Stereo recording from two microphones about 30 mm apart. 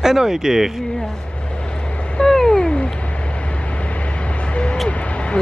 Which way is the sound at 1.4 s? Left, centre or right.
Left.